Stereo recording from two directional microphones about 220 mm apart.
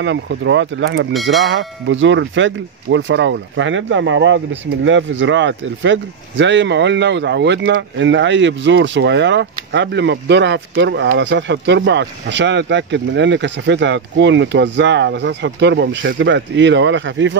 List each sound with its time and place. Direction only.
0.0 s speech: 55° right (ahead or behind)